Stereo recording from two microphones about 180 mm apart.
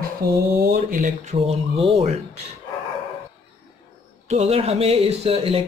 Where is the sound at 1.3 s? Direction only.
35° right (ahead or behind).